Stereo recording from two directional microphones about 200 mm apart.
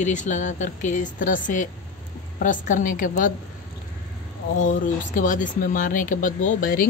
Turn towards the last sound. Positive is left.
turn(degrees=45)  # may be behind; listen again after turning